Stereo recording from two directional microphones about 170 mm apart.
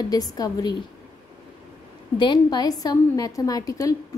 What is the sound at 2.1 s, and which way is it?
A woman's voice, 25° left (ahead or behind).